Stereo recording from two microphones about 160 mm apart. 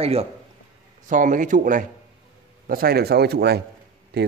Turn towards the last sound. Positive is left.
turn(degrees=-90)